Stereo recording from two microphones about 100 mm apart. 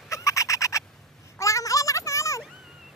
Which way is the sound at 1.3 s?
30° left (ahead or behind).